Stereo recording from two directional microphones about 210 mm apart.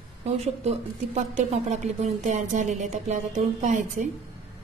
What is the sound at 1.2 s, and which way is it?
Speech, 35° right (ahead or behind).